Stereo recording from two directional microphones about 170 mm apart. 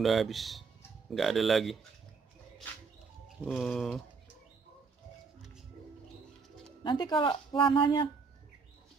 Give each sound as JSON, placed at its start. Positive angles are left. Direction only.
{"t": 0.0, "sound": "speech", "side_deg": 0}
{"t": 3.4, "sound": "speech", "side_deg": 0}
{"t": 6.8, "sound": "speech", "side_deg": 25}